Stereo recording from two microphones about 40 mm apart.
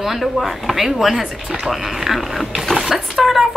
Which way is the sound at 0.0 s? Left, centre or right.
Centre.